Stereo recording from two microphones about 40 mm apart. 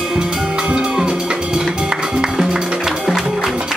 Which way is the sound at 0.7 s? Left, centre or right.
Right.